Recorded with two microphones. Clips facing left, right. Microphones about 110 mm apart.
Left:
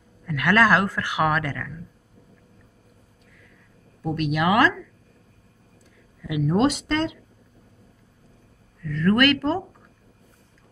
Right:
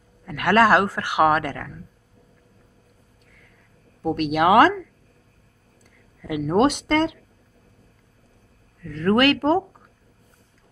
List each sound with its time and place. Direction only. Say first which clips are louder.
0.2 s speech: right 2 dB; 45° right (ahead or behind)
1.2 s speech: right 5 dB; 50° right (ahead or behind)
4.0 s speech: right 4 dB; 50° right (ahead or behind)
6.2 s speech: right 2 dB; 50° right (ahead or behind)
8.8 s speech: right 1 dB; 45° right (ahead or behind)